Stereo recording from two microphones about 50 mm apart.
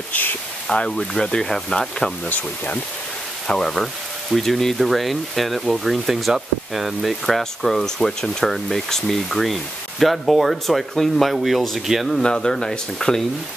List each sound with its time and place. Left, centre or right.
0.1 s speech: left
0.7 s speech: centre
2.2 s speech: left
3.4 s speech: centre
3.7 s speech: centre
12.2 s speech: centre